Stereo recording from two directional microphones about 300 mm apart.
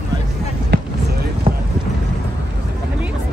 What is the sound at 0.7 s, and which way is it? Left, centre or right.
Basketball bounce, right.